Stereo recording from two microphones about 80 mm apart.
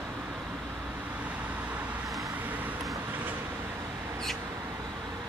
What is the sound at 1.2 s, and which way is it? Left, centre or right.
Vehicle, centre.